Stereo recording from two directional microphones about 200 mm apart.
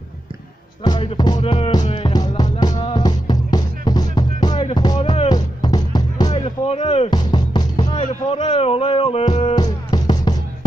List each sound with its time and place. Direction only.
0.8 s music: 20° left (ahead or behind)
6.3 s music: 30° left (ahead or behind)
8.0 s music: 30° left (ahead or behind)